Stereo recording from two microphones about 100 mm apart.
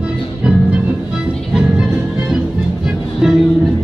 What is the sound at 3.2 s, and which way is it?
Music, 5° right (ahead or behind).